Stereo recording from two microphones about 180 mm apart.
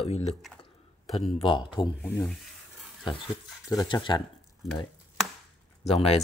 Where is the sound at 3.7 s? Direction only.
20° left (ahead or behind).